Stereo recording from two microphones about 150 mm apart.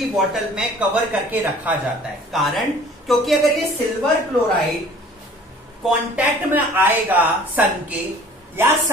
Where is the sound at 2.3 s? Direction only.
Centre (ahead or behind).